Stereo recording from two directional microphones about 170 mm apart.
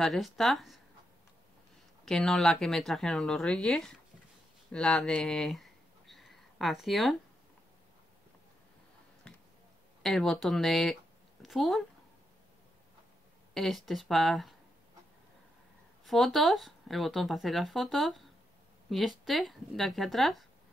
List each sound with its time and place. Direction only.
0.0 s speech: centre (ahead or behind)
2.0 s speech: centre (ahead or behind)
4.7 s a sound: 5° left (ahead or behind)
9.3 s a sound: 5° left (ahead or behind)
10.0 s speech: centre (ahead or behind)
13.6 s speech: centre (ahead or behind)
16.1 s speech: centre (ahead or behind)